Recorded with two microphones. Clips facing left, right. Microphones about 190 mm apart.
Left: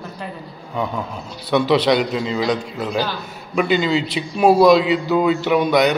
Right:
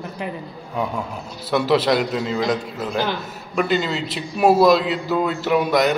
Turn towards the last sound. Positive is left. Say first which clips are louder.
# left 2 dB
turn(degrees=0)  # may be behind; listen again after turning